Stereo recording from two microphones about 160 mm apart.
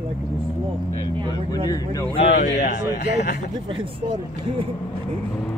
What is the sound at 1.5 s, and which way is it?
Speech, 25° left (ahead or behind).